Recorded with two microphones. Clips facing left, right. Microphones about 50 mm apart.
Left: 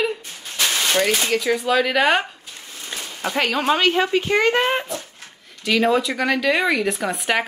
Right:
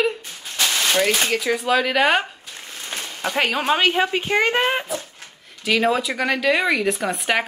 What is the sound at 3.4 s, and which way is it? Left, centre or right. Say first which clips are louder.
A woman's voice: left 1 dB; centre.